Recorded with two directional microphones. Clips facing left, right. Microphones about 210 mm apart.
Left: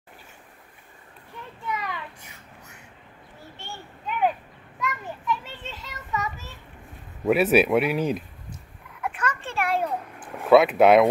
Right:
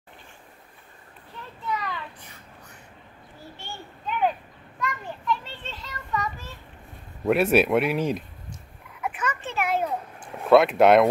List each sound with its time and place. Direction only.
1.7 s a sound: 20° left (ahead or behind)
2.2 s whispering: 10° left (ahead or behind)
3.6 s children playing: 5° left (ahead or behind)
7.2 s speech: centre (ahead or behind)
9.0 s a sound: 5° right (ahead or behind)
10.5 s speech: centre (ahead or behind)